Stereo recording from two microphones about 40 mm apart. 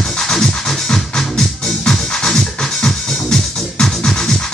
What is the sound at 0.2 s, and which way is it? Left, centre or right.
Music, centre.